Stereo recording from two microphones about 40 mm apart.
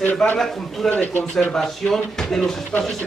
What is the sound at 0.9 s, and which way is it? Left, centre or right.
Speech, left.